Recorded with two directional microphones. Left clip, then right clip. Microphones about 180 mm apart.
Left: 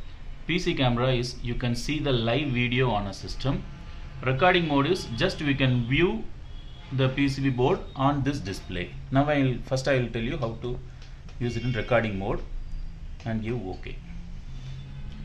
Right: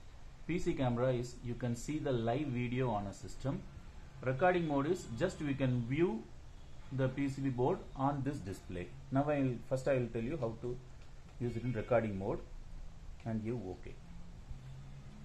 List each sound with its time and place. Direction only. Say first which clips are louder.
0.5 s speech: left 10 dB; 50° right (ahead or behind)
11.7 s speech: left 8 dB; 40° right (ahead or behind)